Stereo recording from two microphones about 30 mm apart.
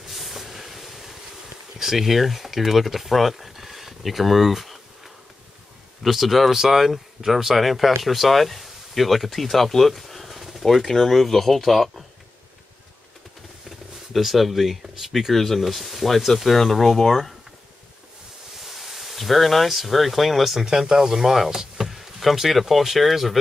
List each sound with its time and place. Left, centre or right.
0.1 s train: centre
1.8 s speech: centre
6.5 s speech: centre
13.7 s a sound: centre
15.1 s speech: centre
18.6 s speech: centre
20.6 s speech: centre